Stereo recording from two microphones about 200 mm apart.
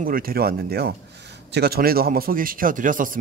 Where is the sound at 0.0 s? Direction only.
45° right (ahead or behind).